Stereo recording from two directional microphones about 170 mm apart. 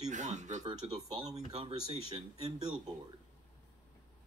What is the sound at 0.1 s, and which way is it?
Speech, 45° right (ahead or behind).